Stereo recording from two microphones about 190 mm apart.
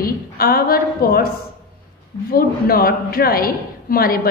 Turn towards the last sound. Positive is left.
turn(degrees=50)  # may be behind; listen again after turning